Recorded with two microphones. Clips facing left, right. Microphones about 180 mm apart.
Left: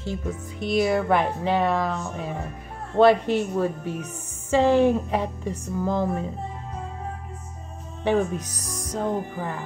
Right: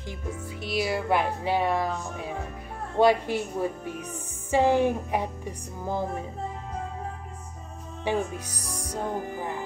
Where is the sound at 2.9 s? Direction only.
10° right (ahead or behind).